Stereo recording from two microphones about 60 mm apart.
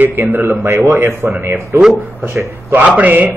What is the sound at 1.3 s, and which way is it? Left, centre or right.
Speech, right.